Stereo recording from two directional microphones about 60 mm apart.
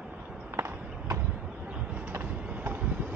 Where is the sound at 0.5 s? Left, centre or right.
Right.